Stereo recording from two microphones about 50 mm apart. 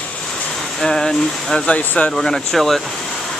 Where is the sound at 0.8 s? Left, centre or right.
Centre.